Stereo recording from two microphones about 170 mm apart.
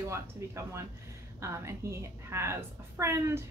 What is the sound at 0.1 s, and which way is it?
A woman's voice, 15° right (ahead or behind).